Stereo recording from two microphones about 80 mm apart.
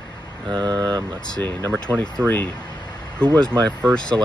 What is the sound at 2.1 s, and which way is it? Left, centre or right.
Speech, centre.